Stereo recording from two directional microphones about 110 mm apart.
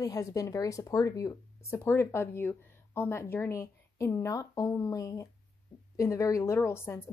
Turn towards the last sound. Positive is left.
turn(degrees=25)  # may be behind; listen again after turning